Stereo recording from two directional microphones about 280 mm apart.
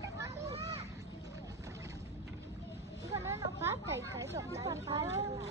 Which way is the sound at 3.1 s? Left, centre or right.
Centre.